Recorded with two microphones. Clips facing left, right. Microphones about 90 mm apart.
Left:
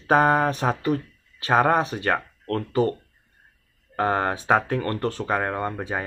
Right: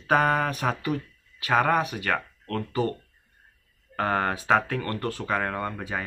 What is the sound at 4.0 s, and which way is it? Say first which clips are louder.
Speech: left 3 dB; 25° left (ahead or behind).